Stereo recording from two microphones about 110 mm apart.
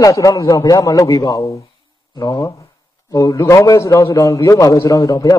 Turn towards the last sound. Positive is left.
turn(degrees=35)  # may be behind; listen again after turning